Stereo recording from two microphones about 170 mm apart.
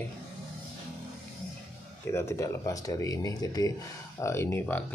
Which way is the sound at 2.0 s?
15° left (ahead or behind).